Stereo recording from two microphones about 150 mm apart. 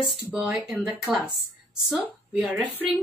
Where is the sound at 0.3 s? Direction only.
5° right (ahead or behind).